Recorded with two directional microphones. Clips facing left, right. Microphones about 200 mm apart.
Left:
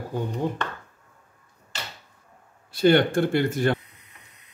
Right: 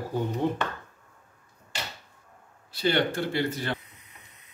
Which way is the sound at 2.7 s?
50° left (ahead or behind).